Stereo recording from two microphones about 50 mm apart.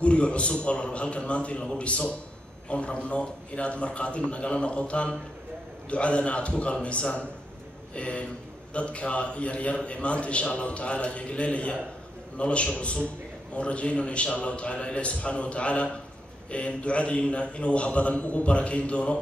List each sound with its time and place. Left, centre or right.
0.0 s a man's voice: left